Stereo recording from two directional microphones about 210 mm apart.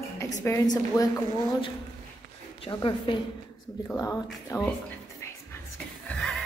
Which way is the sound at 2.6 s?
25° left (ahead or behind).